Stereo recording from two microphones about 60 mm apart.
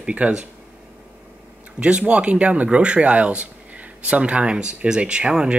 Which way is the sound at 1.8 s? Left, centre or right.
Right.